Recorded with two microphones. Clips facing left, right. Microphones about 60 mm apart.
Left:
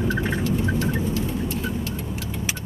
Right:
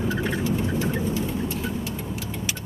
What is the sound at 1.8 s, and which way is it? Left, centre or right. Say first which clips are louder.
Vehicle: left 1 dB; centre.